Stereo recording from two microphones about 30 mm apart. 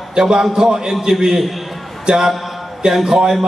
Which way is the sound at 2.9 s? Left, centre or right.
Centre.